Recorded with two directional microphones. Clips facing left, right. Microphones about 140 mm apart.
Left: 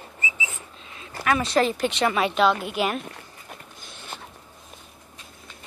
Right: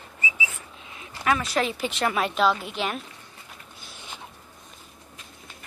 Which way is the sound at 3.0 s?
55° left (ahead or behind).